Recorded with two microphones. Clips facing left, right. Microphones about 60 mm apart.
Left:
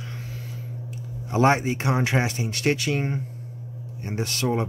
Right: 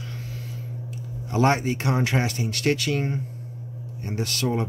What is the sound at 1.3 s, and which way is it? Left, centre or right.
Speech, centre.